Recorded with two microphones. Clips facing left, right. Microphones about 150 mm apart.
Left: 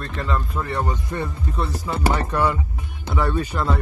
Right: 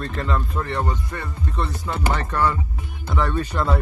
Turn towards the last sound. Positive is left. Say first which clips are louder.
# even
turn(degrees=0)  # may be behind; listen again after turning